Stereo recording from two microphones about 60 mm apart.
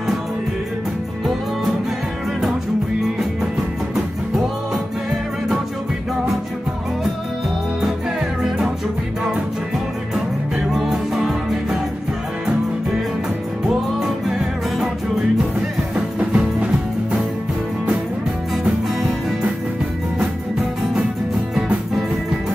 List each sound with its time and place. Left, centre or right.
10.7 s music: centre
13.7 s music: centre
16.2 s music: centre